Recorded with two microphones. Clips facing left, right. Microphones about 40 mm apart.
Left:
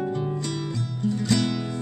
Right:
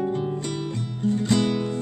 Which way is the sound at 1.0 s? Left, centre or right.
Right.